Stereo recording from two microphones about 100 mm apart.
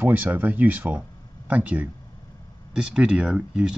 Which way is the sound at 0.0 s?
15° right (ahead or behind).